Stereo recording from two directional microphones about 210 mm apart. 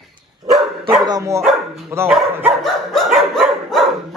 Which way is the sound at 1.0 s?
15° right (ahead or behind).